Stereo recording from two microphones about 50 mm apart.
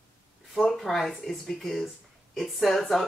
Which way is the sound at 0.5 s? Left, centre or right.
Centre.